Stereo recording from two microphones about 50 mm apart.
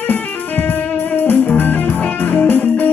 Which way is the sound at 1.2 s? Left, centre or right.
Left.